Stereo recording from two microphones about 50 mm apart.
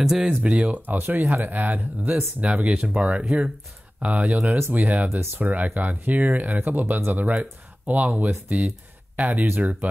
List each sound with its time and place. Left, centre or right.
0.0 s speech: centre
0.4 s speech: right
0.9 s speech: right
2.4 s speech: right
3.3 s speech: centre
4.0 s speech: right
4.5 s speech: right
4.7 s speech: right